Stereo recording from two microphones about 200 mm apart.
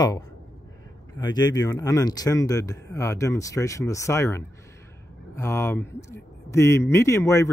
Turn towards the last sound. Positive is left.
turn(degrees=15)  # may be behind; listen again after turning